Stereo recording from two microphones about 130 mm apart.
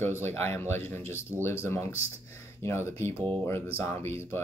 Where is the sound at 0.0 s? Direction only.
15° left (ahead or behind).